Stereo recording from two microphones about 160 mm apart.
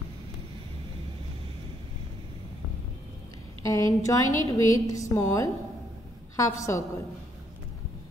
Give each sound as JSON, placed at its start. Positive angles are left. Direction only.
{"t": 3.6, "sound": "a woman's voice", "side_deg": 20}